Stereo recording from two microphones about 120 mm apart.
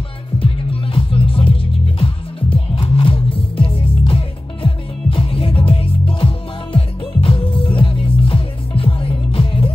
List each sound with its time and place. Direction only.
0.9 s music: 50° left (ahead or behind)